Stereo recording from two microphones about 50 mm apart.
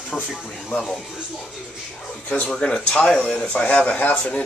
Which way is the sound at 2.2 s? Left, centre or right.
Left.